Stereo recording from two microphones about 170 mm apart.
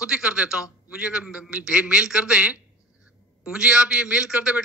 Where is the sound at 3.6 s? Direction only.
5° right (ahead or behind).